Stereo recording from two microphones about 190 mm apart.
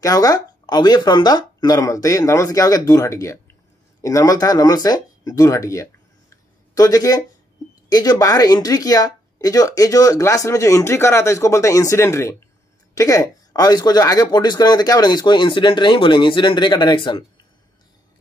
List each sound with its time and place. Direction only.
0.0 s speech: 20° left (ahead or behind)
6.3 s a sound: 20° left (ahead or behind)
7.9 s speech: 20° left (ahead or behind)